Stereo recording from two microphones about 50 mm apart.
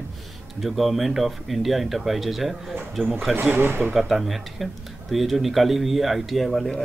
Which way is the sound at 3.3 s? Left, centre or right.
Right.